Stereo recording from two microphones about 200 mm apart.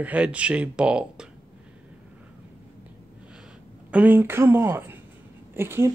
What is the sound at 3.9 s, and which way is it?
Speech, 10° right (ahead or behind).